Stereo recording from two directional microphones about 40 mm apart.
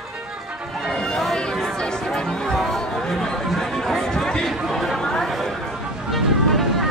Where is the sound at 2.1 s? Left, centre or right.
Centre.